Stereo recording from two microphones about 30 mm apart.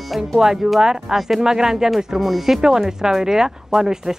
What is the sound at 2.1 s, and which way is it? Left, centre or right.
Speech, centre.